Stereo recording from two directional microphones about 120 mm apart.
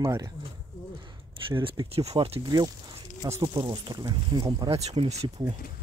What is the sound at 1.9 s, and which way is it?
Speech, 60° right (ahead or behind).